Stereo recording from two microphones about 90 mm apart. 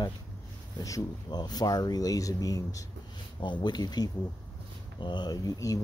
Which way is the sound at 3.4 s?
60° left (ahead or behind).